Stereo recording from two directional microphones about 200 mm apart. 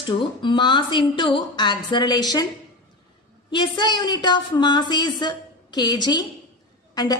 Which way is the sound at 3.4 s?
25° left (ahead or behind).